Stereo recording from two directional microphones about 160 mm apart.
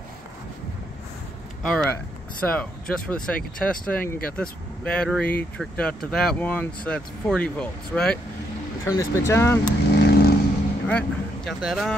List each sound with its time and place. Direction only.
1.6 s speech: 5° left (ahead or behind)
9.9 s vehicle: 90° left
10.9 s speech: 5° left (ahead or behind)